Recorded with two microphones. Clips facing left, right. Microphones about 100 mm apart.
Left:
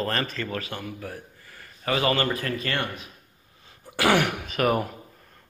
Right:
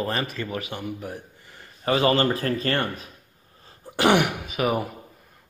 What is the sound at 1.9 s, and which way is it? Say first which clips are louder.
A man's voice: right 3 dB; 30° right (ahead or behind).